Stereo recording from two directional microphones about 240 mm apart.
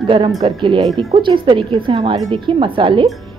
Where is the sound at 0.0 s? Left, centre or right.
Right.